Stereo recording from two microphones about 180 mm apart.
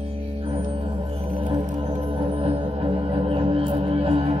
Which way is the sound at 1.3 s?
25° right (ahead or behind).